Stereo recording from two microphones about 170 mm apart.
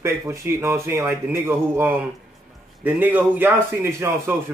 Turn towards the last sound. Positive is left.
turn(degrees=-15)  # may be behind; listen again after turning